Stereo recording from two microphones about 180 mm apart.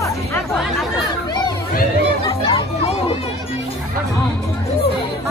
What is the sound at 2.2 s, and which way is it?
Chatter, 30° left (ahead or behind).